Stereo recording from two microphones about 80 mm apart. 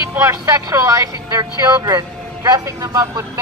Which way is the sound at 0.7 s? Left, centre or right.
Right.